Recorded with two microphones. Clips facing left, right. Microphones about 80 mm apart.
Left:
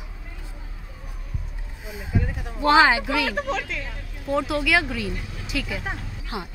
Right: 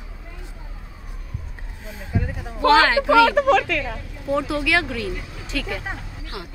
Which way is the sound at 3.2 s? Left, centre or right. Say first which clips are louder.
Right 10 dB; right.